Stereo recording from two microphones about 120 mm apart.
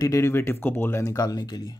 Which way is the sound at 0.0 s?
25° left (ahead or behind).